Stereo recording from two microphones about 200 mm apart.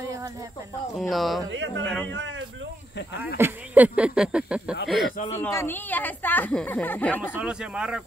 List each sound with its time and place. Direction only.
0.9 s speech: centre (ahead or behind)
1.5 s speech: 65° right (ahead or behind)
1.9 s a woman's voice: 5° left (ahead or behind)
2.1 s a man's voice: 65° right (ahead or behind)
3.3 s speech: 10° right (ahead or behind)
5.1 s speech: 35° left (ahead or behind)
5.4 s a woman's voice: 10° left (ahead or behind)
7.3 s speech: 5° right (ahead or behind)